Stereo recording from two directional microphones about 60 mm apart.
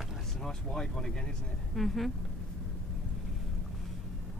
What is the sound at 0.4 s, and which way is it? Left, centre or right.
Speech, centre.